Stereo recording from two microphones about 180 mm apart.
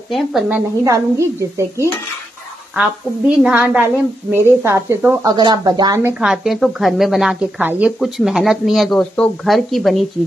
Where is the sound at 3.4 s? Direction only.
5° right (ahead or behind).